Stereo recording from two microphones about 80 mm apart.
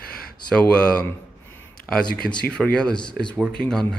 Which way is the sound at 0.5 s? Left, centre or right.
Centre.